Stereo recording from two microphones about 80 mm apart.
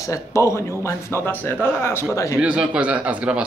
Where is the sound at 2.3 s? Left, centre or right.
Centre.